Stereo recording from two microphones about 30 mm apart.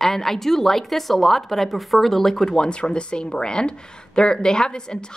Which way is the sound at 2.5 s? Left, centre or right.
Left.